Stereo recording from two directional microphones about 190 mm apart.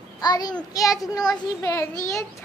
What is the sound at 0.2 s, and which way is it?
A child's voice, 20° left (ahead or behind).